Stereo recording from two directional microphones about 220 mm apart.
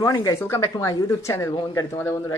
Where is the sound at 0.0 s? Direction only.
15° left (ahead or behind).